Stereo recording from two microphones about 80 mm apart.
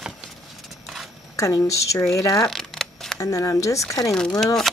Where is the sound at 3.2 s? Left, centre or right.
Left.